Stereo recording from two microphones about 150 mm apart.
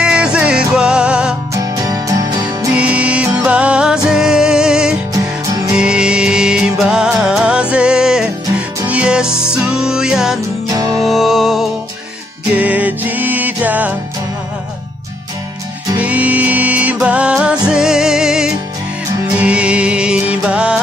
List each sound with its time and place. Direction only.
0.0 s music: 5° right (ahead or behind)
1.5 s music: 25° right (ahead or behind)
2.7 s music: 10° right (ahead or behind)
5.1 s music: 25° right (ahead or behind)
5.8 s music: 5° right (ahead or behind)
10.7 s music: 25° right (ahead or behind)
11.0 s music: centre (ahead or behind)
16.0 s music: 10° right (ahead or behind)